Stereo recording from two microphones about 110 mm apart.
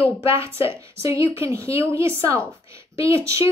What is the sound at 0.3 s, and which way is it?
A woman's voice, 25° right (ahead or behind).